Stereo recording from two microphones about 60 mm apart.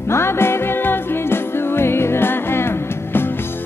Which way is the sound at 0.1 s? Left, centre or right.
Left.